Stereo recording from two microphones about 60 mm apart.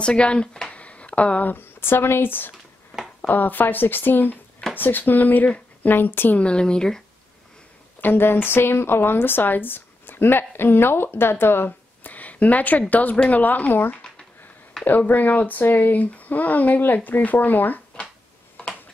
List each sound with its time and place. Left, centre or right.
0.0 s speech: centre
1.5 s speech: left
6.4 s speech: centre
8.0 s a woman's voice: left